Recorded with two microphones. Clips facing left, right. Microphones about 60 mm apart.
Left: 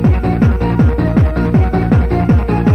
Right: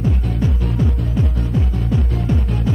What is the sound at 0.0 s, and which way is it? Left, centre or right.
Music, left.